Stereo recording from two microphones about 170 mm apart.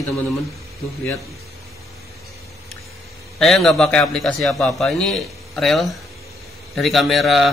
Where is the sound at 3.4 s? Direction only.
Centre (ahead or behind).